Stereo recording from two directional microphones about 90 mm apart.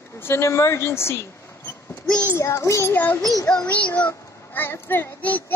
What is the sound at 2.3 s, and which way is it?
Child singing, 30° left (ahead or behind).